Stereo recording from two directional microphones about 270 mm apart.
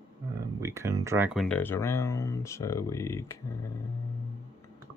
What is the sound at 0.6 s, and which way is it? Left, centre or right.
Speech, centre.